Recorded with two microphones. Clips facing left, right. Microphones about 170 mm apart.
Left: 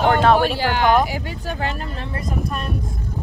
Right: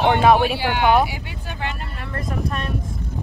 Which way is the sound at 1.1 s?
40° left (ahead or behind).